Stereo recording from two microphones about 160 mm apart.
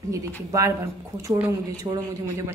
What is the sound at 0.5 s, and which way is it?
Speech, 20° right (ahead or behind).